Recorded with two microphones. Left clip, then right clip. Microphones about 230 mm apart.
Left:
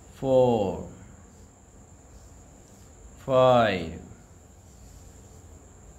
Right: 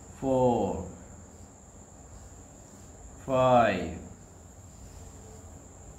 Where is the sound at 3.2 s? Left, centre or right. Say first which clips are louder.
Left 3 dB; left.